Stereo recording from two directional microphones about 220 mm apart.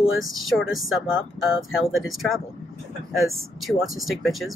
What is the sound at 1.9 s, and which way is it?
Speech, centre (ahead or behind).